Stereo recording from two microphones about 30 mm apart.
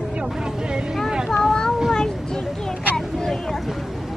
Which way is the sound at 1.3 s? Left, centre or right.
Left.